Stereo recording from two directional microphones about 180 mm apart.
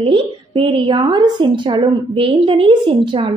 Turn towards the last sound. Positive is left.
turn(degrees=-30)  # may be behind; listen again after turning